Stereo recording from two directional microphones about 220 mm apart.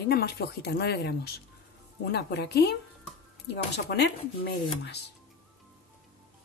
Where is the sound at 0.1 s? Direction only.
45° left (ahead or behind).